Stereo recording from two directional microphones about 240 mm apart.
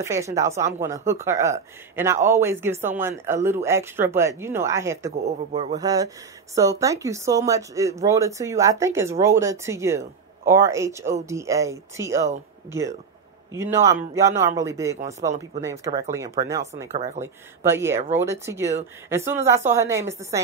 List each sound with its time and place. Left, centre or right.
0.0 s speech: centre
5.1 s speech: right
13.5 s speech: centre
15.0 s speech: right
15.6 s speech: centre